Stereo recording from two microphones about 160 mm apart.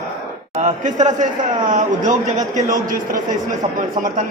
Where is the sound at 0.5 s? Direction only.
50° right (ahead or behind).